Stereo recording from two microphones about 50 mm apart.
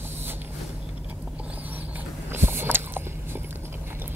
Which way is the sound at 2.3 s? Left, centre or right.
Right.